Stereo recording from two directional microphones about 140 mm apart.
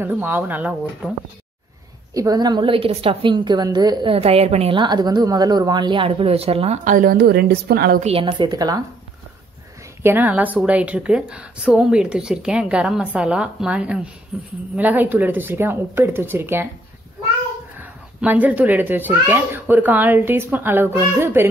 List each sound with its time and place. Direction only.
0.0 s a woman's voice: 15° right (ahead or behind)
2.1 s a woman's voice: 25° right (ahead or behind); by 6.8 s 45° right (ahead or behind)
6.8 s a woman's voice: 75° right (ahead or behind)
7.7 s a woman's voice: 90° right
8.0 s a woman's voice: 40° right (ahead or behind); by 8.8 s 25° right (ahead or behind)
10.0 s a woman's voice: 10° right (ahead or behind)
17.7 s a woman's voice: 10° right (ahead or behind)